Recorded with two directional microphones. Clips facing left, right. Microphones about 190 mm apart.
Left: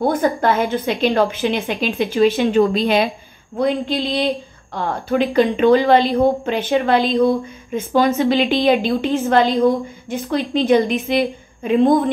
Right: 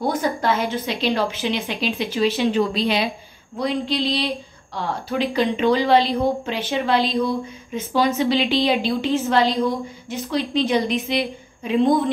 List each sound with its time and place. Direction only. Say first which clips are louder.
0.0 s a woman's voice: left 5 dB; 55° left (ahead or behind)